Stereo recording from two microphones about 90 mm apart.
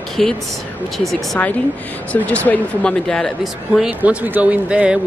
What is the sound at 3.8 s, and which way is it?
Speech, 20° right (ahead or behind).